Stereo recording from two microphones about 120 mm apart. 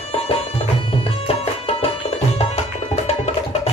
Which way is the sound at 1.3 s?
55° left (ahead or behind).